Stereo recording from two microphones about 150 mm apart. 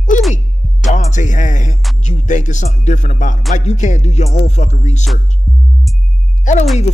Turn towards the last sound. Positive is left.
turn(degrees=55)  # may be behind; listen again after turning